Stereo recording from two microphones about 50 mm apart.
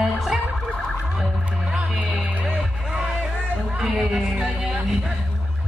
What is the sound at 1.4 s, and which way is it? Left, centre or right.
Music, right.